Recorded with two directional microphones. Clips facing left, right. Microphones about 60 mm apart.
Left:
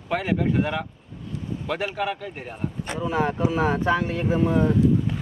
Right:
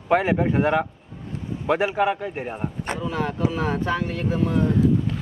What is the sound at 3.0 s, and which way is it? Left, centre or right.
Speech, centre.